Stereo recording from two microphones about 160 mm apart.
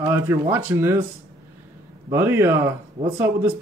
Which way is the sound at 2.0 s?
15° right (ahead or behind).